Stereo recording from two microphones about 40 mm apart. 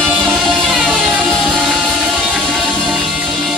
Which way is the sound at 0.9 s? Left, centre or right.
Right.